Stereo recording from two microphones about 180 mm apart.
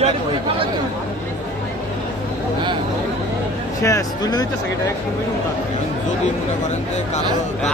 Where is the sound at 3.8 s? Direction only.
20° left (ahead or behind).